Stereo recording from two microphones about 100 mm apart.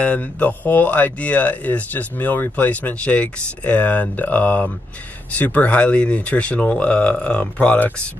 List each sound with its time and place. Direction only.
0.0 s speech: 15° left (ahead or behind)